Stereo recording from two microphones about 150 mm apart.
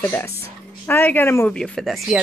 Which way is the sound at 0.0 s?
15° left (ahead or behind).